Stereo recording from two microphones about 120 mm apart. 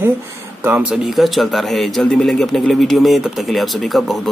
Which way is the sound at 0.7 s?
5° right (ahead or behind).